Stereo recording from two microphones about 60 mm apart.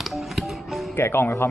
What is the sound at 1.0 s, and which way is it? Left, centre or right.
Speech, left.